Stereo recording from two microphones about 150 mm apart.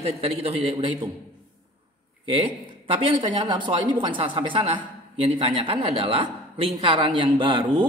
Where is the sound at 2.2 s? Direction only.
40° right (ahead or behind).